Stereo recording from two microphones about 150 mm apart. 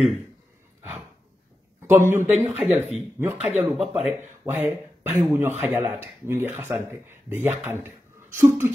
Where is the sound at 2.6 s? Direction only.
Centre (ahead or behind).